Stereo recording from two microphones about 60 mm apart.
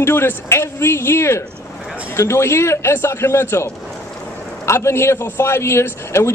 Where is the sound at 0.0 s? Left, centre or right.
Left.